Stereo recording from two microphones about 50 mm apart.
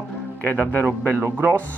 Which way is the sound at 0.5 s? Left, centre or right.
Left.